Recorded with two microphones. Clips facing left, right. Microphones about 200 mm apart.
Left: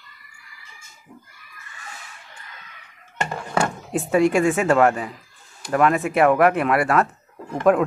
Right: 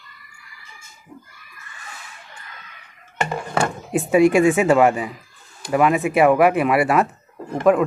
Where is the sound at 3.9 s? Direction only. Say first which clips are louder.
Right 4 dB; 10° right (ahead or behind).